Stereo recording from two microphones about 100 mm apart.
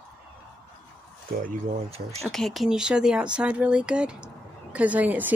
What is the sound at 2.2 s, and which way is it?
Speech, centre (ahead or behind).